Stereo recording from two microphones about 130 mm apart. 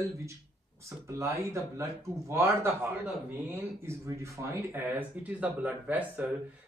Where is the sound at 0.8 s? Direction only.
20° right (ahead or behind).